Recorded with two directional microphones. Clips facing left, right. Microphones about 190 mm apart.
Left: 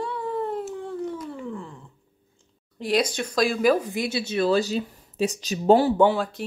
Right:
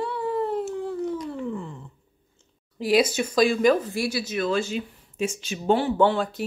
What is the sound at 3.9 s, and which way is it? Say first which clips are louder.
Speech: even; 20° left (ahead or behind).